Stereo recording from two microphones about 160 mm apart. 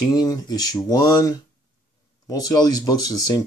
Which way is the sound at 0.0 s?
25° left (ahead or behind).